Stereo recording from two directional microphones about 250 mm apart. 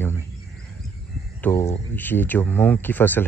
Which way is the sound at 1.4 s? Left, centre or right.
Centre.